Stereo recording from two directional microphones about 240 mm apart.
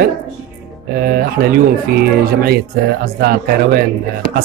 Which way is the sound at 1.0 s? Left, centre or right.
Right.